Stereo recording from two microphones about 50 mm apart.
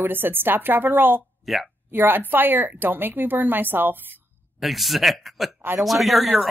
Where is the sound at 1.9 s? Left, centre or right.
Right.